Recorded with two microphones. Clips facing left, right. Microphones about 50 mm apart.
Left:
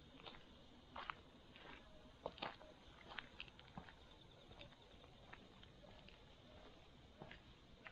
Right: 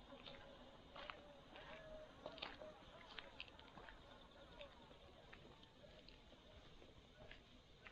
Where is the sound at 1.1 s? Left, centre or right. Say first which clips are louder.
Right 3 dB; centre.